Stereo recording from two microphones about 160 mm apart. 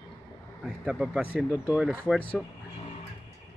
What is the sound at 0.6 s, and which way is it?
Speech, centre (ahead or behind).